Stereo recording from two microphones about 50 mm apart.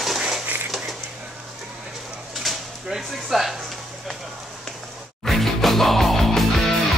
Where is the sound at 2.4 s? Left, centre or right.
Centre.